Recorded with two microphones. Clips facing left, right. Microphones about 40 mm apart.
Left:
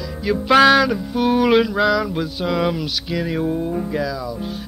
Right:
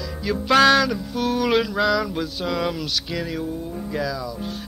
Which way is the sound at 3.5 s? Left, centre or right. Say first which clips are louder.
Left 8 dB; left.